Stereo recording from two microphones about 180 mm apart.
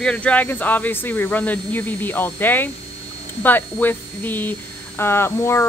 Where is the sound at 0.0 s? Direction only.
5° left (ahead or behind).